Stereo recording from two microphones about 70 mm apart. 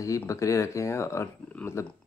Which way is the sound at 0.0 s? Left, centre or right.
Left.